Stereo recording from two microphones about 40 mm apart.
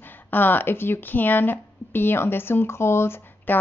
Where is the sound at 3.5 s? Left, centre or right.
Left.